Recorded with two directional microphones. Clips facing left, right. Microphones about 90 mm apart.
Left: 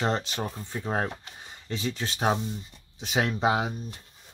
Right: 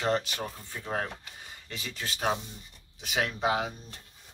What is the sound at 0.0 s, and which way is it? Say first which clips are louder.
Speech: left 1 dB; 25° left (ahead or behind).